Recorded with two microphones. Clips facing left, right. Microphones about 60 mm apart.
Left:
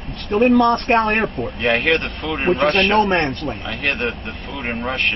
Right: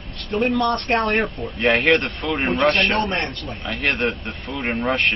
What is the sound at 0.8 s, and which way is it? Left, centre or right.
Speech, centre.